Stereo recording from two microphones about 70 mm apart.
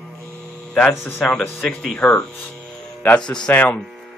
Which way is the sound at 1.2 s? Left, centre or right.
Centre.